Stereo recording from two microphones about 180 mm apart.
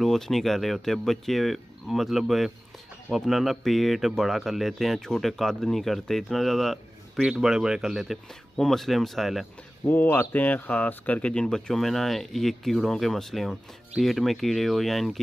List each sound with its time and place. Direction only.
0.0 s speech: centre (ahead or behind)